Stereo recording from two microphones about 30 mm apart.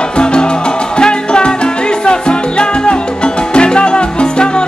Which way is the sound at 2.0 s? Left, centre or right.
Left.